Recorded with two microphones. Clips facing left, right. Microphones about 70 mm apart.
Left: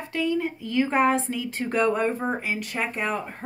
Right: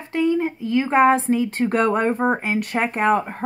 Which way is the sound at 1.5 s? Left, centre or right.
Right.